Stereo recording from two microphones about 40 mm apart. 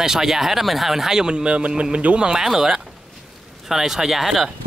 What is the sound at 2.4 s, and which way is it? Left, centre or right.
Speech, centre.